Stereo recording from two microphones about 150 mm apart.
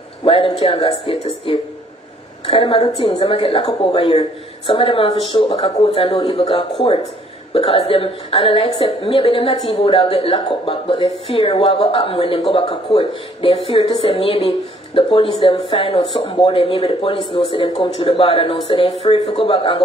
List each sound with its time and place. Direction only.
0.2 s a woman's voice: 40° left (ahead or behind)